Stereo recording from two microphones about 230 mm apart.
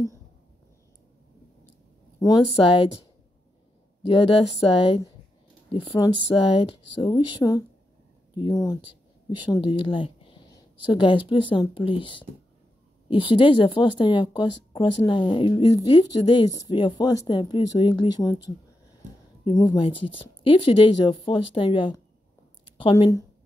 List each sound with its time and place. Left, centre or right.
2.1 s speech: centre
4.0 s speech: left
19.4 s speech: centre